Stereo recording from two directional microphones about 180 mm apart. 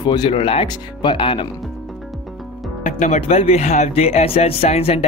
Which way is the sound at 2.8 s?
40° left (ahead or behind).